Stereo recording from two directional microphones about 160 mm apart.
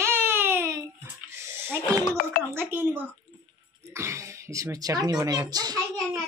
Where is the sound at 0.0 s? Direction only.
15° right (ahead or behind).